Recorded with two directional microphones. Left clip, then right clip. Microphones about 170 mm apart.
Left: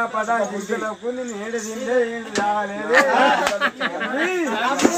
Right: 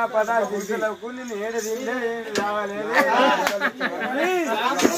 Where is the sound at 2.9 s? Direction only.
15° left (ahead or behind).